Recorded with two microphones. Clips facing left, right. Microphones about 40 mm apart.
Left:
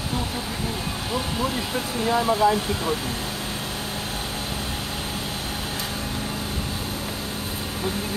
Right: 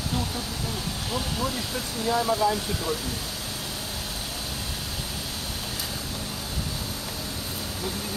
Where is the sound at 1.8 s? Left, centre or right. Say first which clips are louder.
Left 3 dB; left.